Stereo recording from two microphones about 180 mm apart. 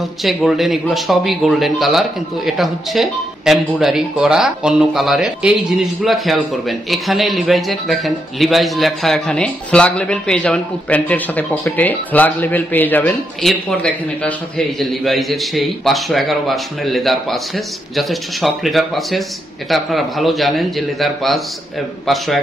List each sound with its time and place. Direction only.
0.2 s speech: centre (ahead or behind)